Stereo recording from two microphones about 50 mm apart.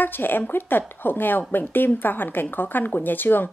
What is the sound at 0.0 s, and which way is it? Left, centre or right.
Speech, left.